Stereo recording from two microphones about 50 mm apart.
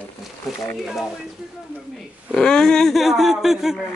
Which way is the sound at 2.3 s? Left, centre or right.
Centre.